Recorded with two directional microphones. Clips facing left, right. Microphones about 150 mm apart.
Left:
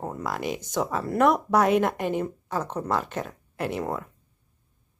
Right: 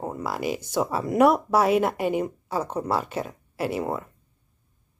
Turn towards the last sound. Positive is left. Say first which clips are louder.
# right 2 dB
turn(degrees=-5)  # may be behind; listen again after turning